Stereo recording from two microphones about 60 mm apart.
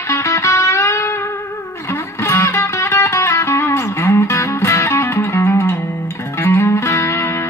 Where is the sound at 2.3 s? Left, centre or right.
Left.